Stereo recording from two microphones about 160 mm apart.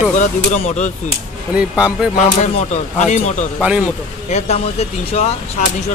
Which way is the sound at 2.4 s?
45° left (ahead or behind).